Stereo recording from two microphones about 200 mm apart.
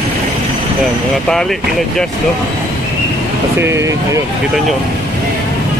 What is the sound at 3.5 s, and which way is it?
Speech, 15° right (ahead or behind).